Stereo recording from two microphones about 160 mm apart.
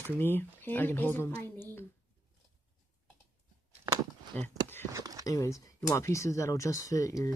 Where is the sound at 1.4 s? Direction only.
15° left (ahead or behind).